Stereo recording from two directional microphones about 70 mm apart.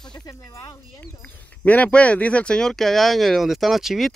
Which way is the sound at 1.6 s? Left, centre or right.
Left.